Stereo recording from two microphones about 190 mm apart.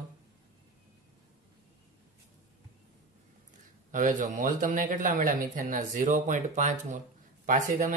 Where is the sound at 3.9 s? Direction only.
45° right (ahead or behind).